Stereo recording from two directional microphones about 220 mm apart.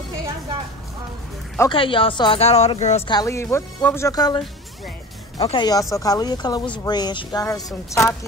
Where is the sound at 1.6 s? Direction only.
20° left (ahead or behind).